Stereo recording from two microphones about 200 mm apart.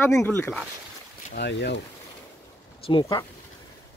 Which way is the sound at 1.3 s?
55° left (ahead or behind).